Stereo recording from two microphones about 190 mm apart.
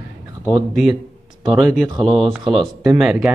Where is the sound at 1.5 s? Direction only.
Centre (ahead or behind).